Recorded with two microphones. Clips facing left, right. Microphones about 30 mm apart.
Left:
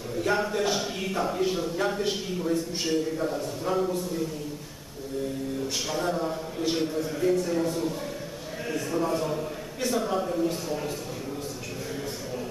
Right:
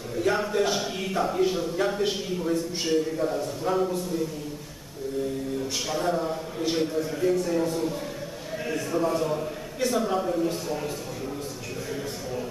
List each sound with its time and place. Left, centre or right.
0.1 s a man's voice: centre
5.9 s a man's voice: centre